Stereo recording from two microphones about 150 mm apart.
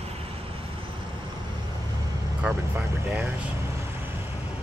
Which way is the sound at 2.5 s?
5° right (ahead or behind).